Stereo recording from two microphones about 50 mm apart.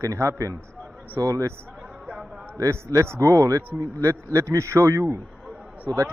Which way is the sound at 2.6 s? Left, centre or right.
Right.